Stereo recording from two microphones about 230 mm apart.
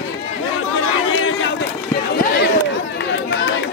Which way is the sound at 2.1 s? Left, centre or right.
Left.